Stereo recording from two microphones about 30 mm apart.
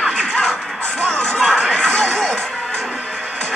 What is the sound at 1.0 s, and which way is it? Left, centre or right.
Music, left.